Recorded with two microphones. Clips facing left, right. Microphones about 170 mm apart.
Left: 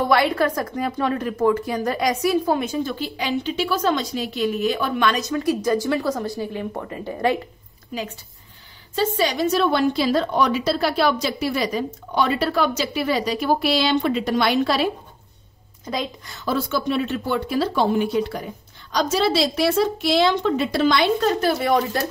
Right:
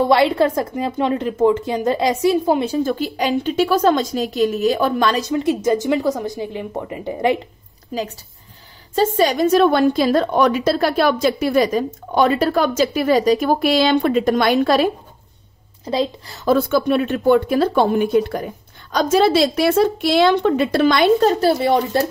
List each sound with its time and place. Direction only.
0.0 s a woman's voice: 25° right (ahead or behind)
2.6 s a woman's voice: 35° right (ahead or behind)
2.9 s a woman's voice: 45° right (ahead or behind)
5.3 s a woman's voice: 20° right (ahead or behind)
7.9 s a woman's voice: 40° right (ahead or behind)
15.8 s a woman's voice: 30° right (ahead or behind)
16.4 s a woman's voice: 50° right (ahead or behind)
21.2 s a woman's voice: 35° right (ahead or behind)